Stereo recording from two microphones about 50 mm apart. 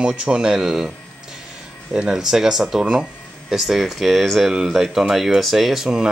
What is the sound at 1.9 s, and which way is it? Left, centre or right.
Speech, centre.